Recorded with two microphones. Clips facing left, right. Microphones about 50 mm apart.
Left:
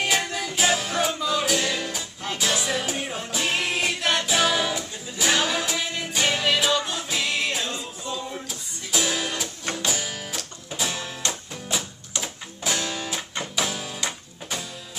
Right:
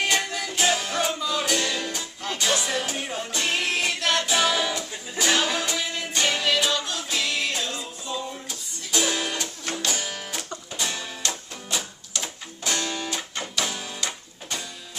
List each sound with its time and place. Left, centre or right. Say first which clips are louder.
0.0 s music: even; centre
4.3 s music: left 1 dB; centre
6.8 s music: left 2 dB; left
7.1 s music: right 2 dB; centre
8.5 s music: left 1 dB; centre